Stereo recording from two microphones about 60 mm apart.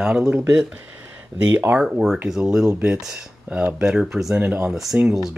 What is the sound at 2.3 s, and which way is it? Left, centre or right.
Speech, centre.